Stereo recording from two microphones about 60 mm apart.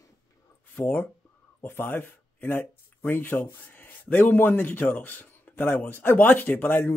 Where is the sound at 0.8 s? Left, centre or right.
Left.